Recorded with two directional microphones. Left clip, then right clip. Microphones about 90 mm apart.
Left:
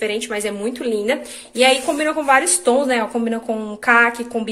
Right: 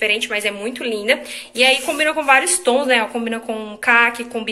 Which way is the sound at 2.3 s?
65° left (ahead or behind).